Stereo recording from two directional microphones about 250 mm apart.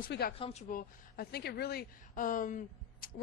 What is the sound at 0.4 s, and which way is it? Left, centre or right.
Speech, left.